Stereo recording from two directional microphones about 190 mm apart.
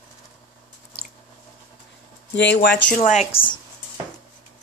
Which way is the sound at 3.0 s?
35° left (ahead or behind).